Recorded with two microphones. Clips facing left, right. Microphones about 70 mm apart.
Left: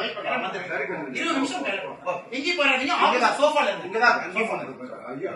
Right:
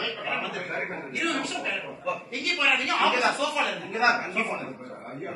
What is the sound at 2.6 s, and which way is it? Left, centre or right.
Speech, left.